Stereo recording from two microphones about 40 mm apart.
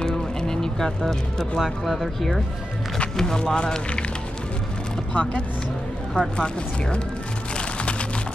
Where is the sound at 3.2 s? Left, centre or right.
Centre.